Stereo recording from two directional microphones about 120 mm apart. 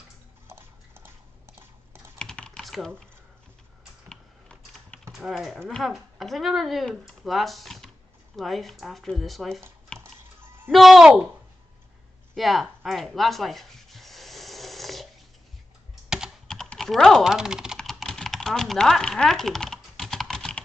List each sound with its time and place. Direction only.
0.5 s dishes: 20° right (ahead or behind)
2.1 s typing: 5° left (ahead or behind)
4.1 s typing: 5° left (ahead or behind)
5.1 s speech: centre (ahead or behind)
9.9 s a sound: 20° right (ahead or behind)
10.7 s speech: centre (ahead or behind)
12.4 s rub: centre (ahead or behind)
16.4 s typing: 5° left (ahead or behind)